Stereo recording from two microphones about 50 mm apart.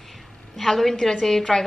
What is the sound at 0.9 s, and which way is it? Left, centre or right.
Speech, centre.